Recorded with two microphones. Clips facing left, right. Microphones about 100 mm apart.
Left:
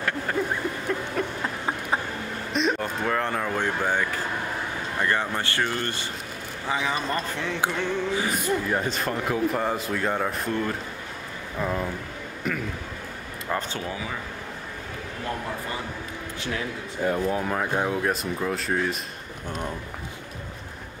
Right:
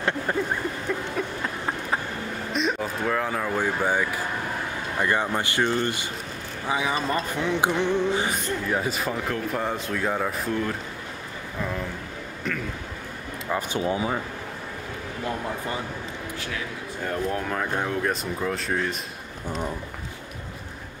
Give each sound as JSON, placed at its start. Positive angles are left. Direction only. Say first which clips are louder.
{"t": 0.9, "sound": "speech", "louder": "even", "side_deg": 0}
{"t": 2.5, "sound": "speech", "louder": "left 2 dB", "side_deg": 0}
{"t": 8.3, "sound": "speech", "louder": "left 2 dB", "side_deg": 0}
{"t": 11.6, "sound": "speech", "louder": "left 3 dB", "side_deg": 15}
{"t": 12.5, "sound": "speech", "louder": "left 1 dB", "side_deg": 5}
{"t": 13.7, "sound": "speech", "louder": "right 7 dB", "side_deg": -25}
{"t": 17.0, "sound": "speech", "louder": "left 3 dB", "side_deg": 5}